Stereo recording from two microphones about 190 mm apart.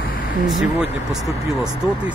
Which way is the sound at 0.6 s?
5° right (ahead or behind).